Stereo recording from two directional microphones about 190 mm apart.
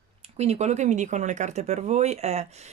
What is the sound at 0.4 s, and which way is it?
Speech, 35° right (ahead or behind).